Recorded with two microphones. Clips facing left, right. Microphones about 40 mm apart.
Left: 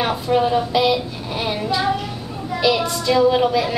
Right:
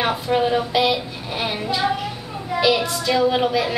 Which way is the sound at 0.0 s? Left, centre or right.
Centre.